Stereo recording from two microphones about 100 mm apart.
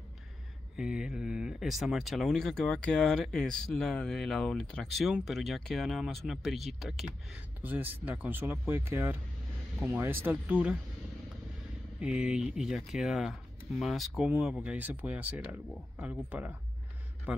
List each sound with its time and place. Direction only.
0.7 s speech: 5° right (ahead or behind)
7.3 s speech: 15° right (ahead or behind)
12.0 s speech: 10° right (ahead or behind)